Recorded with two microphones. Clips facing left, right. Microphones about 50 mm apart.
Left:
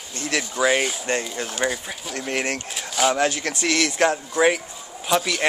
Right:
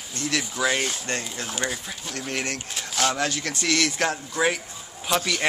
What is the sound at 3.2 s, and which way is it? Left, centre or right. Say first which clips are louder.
Speech: left 4 dB; left.